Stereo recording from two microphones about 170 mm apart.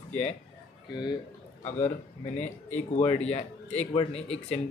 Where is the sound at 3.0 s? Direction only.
40° left (ahead or behind).